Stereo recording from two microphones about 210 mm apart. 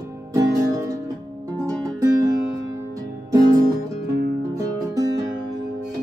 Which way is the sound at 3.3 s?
15° right (ahead or behind).